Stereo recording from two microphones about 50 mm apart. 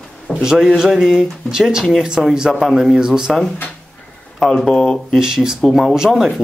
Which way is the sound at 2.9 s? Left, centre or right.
Centre.